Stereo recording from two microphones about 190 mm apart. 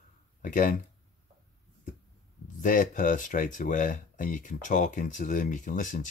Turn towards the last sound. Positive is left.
turn(degrees=45)  # may be behind; listen again after turning